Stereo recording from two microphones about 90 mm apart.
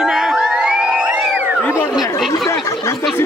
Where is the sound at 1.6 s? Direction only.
20° left (ahead or behind).